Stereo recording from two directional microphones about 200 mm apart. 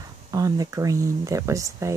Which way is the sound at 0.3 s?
15° right (ahead or behind).